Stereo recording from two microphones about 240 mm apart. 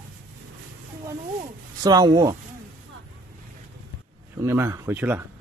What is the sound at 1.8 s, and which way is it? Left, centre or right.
Speech, centre.